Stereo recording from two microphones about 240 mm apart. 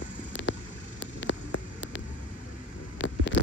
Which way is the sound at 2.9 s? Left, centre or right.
Left.